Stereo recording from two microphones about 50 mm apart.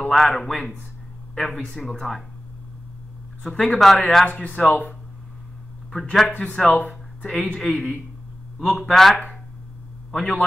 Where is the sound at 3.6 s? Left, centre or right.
Centre.